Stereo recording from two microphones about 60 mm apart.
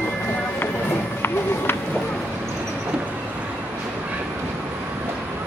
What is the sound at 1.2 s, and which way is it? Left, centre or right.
Run, left.